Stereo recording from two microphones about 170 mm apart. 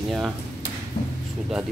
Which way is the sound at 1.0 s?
45° left (ahead or behind).